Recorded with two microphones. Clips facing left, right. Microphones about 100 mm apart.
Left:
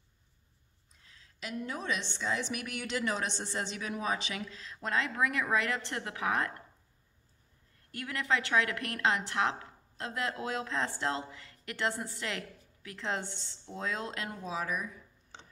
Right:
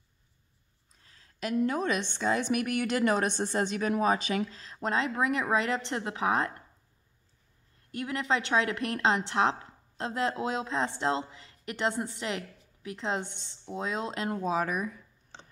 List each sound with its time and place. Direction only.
1.0 s a woman's voice: 45° right (ahead or behind); by 6.5 s 25° right (ahead or behind)
7.9 s a woman's voice: 25° right (ahead or behind)
14.3 s a woman's voice: 50° right (ahead or behind)